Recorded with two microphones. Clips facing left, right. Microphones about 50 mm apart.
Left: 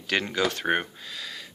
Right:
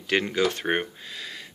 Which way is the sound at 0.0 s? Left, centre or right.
Centre.